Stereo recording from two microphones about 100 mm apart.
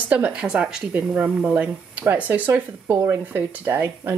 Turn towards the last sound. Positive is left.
turn(degrees=-20)  # may be behind; listen again after turning